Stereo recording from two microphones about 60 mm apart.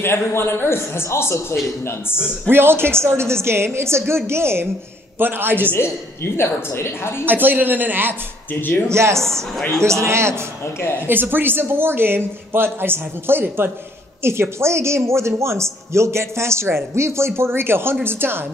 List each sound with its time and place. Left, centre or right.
0.0 s a man's voice: left
2.4 s a woman's voice: right
6.3 s a man's voice: left
7.2 s a woman's voice: right
8.5 s speech: left
8.8 s speech: right
9.2 s speech: centre
9.8 s speech: right
11.1 s a woman's voice: right